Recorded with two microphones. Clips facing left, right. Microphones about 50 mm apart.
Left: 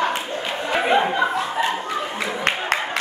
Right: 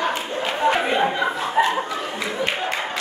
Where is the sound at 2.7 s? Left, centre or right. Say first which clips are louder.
Left 4 dB; left.